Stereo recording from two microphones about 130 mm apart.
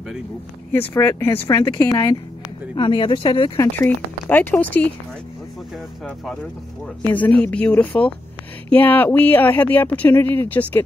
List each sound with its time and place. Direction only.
0.7 s speech: 15° left (ahead or behind)
1.8 s a woman's voice: 30° left (ahead or behind)
3.5 s speech: 15° left (ahead or behind)
7.0 s speech: 15° left (ahead or behind)